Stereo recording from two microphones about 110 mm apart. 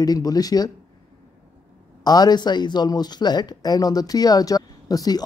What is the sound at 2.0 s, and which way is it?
Speech, 40° left (ahead or behind).